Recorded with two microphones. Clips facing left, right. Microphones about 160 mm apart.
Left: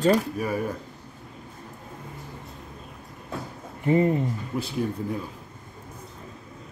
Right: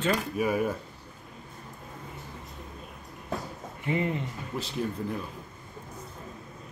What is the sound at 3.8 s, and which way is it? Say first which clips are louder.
Speech: left 8 dB; 40° left (ahead or behind).